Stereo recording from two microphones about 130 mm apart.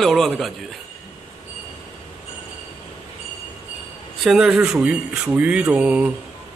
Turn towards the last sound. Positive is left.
turn(degrees=-10)  # may be behind; listen again after turning